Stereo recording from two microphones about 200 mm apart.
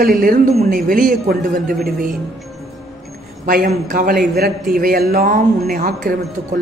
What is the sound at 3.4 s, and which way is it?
A woman's voice, 45° right (ahead or behind).